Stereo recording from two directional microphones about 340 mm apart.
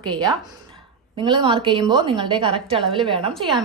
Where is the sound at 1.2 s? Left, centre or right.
Centre.